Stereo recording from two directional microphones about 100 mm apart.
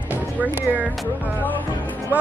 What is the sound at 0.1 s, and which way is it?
Speech, 15° right (ahead or behind).